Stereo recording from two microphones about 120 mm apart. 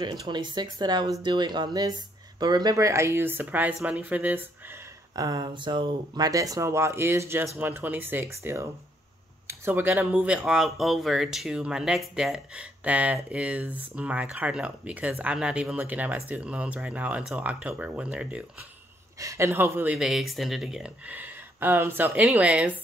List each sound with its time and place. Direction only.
0.0 s speech: 40° right (ahead or behind); by 4.5 s 15° right (ahead or behind)
5.1 s speech: 35° right (ahead or behind); by 18.4 s 10° right (ahead or behind)
19.1 s speech: 25° right (ahead or behind)
20.0 s speech: 5° right (ahead or behind)